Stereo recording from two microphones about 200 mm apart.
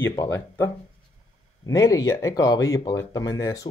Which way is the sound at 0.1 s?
15° left (ahead or behind).